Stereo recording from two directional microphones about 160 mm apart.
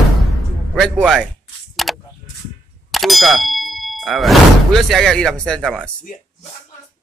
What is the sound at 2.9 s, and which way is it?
Speech, centre (ahead or behind).